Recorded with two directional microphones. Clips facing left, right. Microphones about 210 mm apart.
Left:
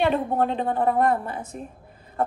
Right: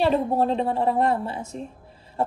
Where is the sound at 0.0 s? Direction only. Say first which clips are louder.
Right 1 dB; 30° right (ahead or behind).